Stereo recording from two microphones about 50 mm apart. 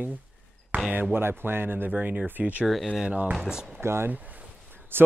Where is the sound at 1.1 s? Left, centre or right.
Right.